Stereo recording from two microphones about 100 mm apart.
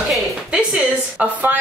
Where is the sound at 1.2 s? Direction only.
20° right (ahead or behind).